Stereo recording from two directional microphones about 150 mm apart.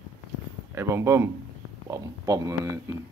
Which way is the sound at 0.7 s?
20° right (ahead or behind).